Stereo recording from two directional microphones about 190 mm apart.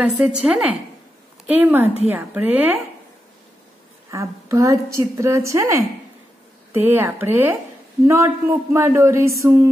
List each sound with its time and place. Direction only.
0.0 s a woman's voice: 5° right (ahead or behind)
4.1 s a woman's voice: 15° right (ahead or behind)